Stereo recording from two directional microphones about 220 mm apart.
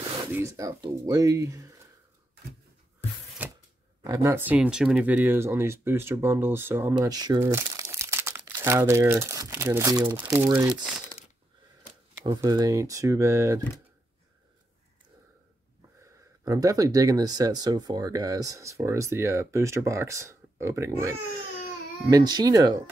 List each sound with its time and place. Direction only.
0.3 s speech: 15° right (ahead or behind)
3.4 s a sound: 10° right (ahead or behind)
4.0 s speech: 15° right (ahead or behind)
12.3 s speech: 15° right (ahead or behind)
16.0 s speech: 15° right (ahead or behind)